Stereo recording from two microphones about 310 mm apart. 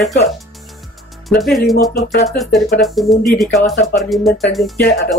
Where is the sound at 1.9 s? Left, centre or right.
Left.